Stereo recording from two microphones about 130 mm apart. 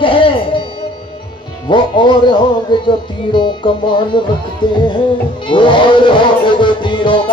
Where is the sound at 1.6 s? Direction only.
35° left (ahead or behind).